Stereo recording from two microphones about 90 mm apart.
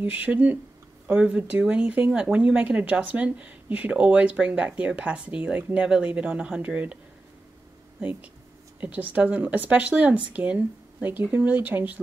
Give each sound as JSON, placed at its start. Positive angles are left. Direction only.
{"t": 0.0, "sound": "speech", "side_deg": -15}
{"t": 8.0, "sound": "speech", "side_deg": -15}